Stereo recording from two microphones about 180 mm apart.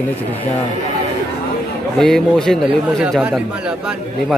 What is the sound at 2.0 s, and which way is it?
A man's voice, centre (ahead or behind).